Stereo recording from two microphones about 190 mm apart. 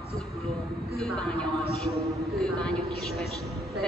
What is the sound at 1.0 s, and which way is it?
A woman's voice, 5° left (ahead or behind).